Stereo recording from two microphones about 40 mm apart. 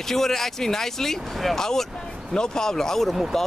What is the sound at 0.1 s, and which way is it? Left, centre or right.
Speech, centre.